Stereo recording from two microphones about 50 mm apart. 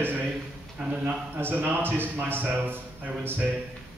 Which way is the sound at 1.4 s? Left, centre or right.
Right.